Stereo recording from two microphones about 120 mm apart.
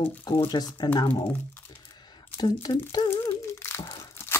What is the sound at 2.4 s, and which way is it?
Crumpling, 35° left (ahead or behind).